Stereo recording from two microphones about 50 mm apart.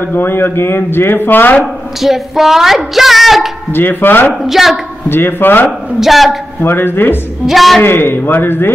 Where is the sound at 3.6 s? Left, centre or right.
Left.